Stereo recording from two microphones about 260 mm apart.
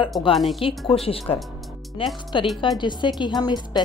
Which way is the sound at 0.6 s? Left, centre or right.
Left.